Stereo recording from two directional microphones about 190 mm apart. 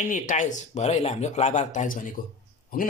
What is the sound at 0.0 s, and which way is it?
Speech, 45° left (ahead or behind).